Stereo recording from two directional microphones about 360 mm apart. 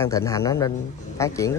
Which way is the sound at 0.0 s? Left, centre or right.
Centre.